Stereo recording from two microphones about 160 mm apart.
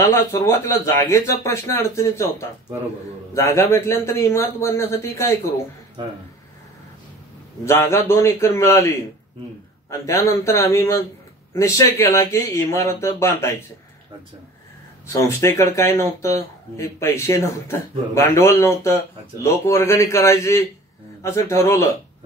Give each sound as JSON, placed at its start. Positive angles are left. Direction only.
{"t": 0.0, "sound": "speech", "side_deg": 20}
{"t": 7.6, "sound": "speech", "side_deg": 15}
{"t": 15.1, "sound": "speech", "side_deg": 20}